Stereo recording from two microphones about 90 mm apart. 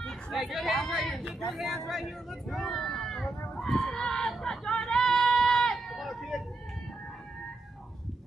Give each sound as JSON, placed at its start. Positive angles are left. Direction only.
{"t": 0.0, "sound": "speech", "side_deg": 0}